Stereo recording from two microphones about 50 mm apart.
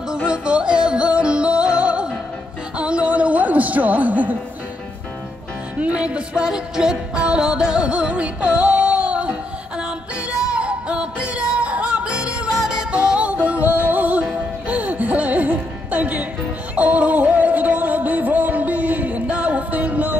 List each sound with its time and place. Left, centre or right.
0.1 s music: centre
5.8 s music: right
10.5 s music: right